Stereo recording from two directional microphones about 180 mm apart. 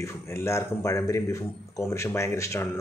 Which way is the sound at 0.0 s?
15° left (ahead or behind).